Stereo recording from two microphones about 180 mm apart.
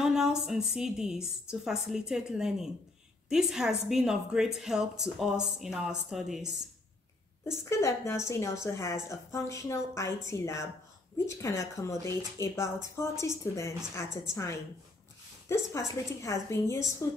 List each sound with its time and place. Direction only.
0.0 s a woman's voice: 5° right (ahead or behind)
7.7 s a woman's voice: 15° left (ahead or behind)